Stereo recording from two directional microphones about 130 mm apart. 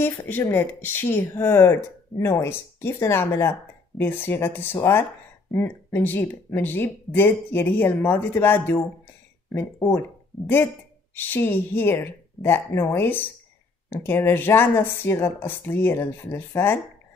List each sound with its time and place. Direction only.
0.0 s speech: 15° left (ahead or behind)